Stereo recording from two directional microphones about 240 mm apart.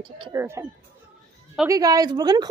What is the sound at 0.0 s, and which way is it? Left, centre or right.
Speech, right.